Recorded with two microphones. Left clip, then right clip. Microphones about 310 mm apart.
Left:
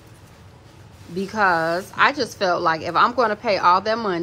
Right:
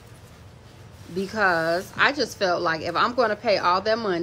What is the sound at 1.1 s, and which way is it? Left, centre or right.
A woman's voice, centre.